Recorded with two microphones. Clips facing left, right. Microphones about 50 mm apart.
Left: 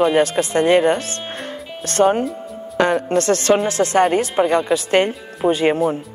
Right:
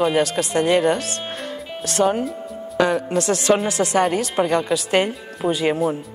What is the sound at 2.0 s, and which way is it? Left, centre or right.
A woman's voice, left.